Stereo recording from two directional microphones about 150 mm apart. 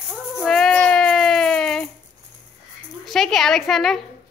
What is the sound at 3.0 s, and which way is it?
Speech, centre (ahead or behind).